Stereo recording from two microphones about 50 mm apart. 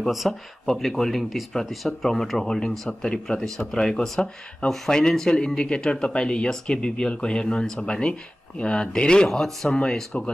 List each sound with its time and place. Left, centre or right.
0.0 s speech: centre